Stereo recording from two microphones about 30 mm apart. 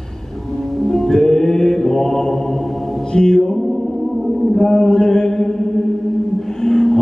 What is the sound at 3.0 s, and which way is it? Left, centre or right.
Mantra, left.